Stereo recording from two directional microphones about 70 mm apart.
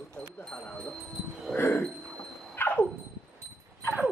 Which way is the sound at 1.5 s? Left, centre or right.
Left.